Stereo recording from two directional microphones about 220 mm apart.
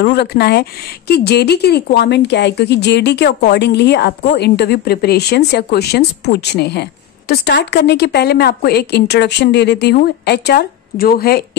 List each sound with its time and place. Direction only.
0.0 s speech: 50° left (ahead or behind)